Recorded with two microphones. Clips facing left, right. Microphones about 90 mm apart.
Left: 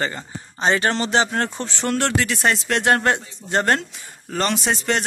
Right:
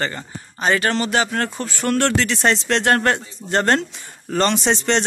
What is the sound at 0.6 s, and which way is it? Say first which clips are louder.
Speech: right 1 dB; 30° left (ahead or behind).